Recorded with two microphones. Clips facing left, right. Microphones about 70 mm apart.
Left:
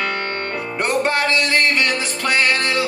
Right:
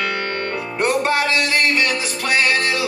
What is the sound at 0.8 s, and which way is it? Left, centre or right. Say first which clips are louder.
Music: right 1 dB; left.